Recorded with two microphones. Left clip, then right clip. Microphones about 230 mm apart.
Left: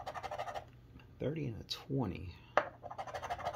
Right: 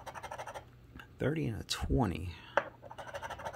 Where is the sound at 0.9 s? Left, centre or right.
Right.